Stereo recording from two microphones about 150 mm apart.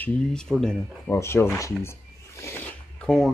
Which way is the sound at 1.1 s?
15° left (ahead or behind).